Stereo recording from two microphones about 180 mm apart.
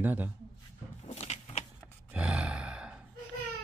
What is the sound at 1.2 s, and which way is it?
Vehicle, 40° left (ahead or behind).